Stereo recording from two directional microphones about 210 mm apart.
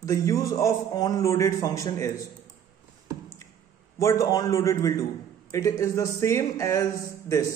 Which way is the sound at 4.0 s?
15° left (ahead or behind).